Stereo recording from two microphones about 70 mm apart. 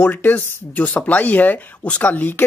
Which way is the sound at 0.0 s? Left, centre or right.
Left.